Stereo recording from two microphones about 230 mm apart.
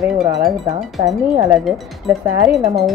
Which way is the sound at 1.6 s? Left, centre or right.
Centre.